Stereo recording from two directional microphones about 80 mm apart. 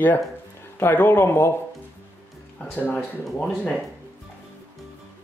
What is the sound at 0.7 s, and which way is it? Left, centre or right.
Speech, left.